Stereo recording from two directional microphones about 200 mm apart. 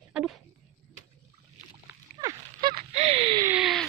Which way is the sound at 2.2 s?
20° right (ahead or behind).